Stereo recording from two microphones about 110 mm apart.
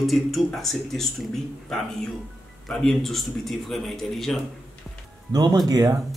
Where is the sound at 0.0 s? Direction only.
Centre (ahead or behind).